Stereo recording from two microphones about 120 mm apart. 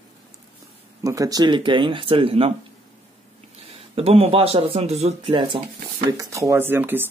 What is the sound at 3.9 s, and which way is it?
Speech, 55° right (ahead or behind).